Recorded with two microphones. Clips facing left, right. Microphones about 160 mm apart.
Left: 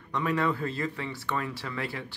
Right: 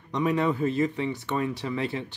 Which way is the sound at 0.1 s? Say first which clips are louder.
Right 3 dB; 20° right (ahead or behind).